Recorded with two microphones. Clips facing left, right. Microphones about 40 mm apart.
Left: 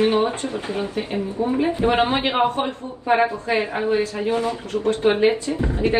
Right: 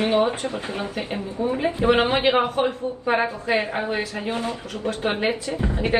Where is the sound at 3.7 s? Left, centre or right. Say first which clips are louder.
Left 4 dB; right.